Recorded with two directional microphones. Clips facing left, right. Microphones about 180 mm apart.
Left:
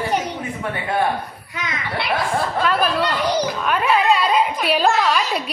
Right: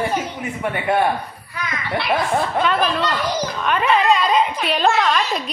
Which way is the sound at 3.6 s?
Centre (ahead or behind).